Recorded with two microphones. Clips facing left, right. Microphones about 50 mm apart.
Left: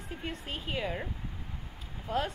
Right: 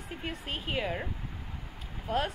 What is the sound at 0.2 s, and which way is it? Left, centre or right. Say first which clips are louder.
Speech: right 2 dB; centre.